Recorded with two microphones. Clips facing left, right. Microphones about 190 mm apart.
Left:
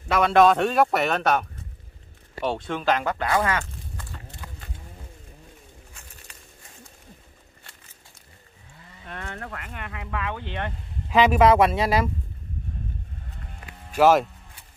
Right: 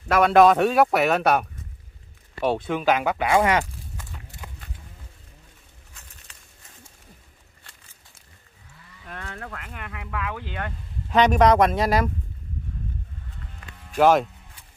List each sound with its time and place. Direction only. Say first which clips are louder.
0.1 s speech: right 2 dB; 5° right (ahead or behind)
2.4 s speech: right 3 dB; 5° right (ahead or behind)
4.4 s cattle: right 2 dB; 20° right (ahead or behind)
9.1 s speech: left 1 dB; 15° left (ahead or behind)
9.8 s speech: even; centre (ahead or behind)
13.9 s speech: even; 5° left (ahead or behind)